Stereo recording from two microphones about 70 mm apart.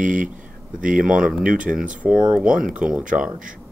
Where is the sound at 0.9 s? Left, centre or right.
Centre.